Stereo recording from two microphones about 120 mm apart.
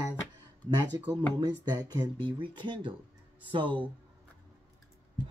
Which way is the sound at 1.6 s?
35° right (ahead or behind).